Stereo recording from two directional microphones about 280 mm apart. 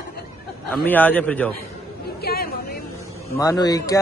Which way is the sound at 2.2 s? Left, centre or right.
Left.